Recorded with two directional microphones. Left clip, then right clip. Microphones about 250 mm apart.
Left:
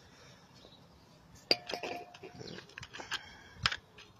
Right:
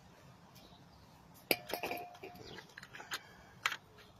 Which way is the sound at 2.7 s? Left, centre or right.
Centre.